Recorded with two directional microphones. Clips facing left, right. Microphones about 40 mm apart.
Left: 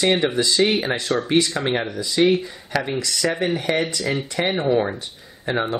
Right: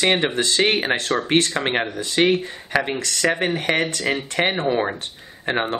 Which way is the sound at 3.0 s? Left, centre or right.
Right.